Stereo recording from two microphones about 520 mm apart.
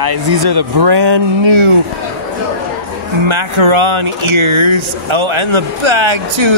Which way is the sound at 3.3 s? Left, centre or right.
Right.